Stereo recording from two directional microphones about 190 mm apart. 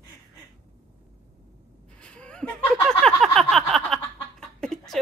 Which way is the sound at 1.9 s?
5° left (ahead or behind).